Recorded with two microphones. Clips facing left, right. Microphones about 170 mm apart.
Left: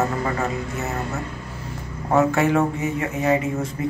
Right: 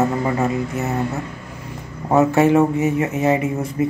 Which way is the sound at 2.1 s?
20° right (ahead or behind).